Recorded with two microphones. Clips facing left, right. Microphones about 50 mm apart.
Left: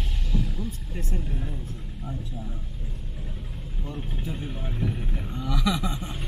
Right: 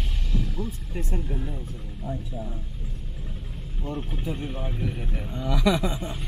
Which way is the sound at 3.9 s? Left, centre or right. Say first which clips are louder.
Right 3 dB; centre.